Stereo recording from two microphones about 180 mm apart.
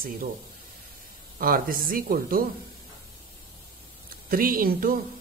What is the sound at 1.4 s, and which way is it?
Speech, 55° right (ahead or behind).